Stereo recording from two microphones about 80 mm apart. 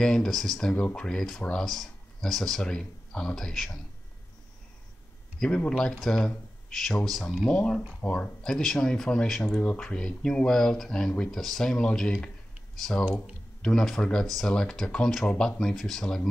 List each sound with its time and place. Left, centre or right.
0.0 s speech: centre
5.4 s speech: centre
8.5 s speech: centre